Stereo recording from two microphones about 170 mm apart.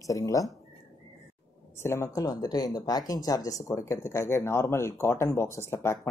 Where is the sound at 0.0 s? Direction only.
20° left (ahead or behind).